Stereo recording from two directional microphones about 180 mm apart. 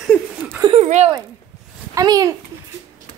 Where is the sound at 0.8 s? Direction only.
40° right (ahead or behind).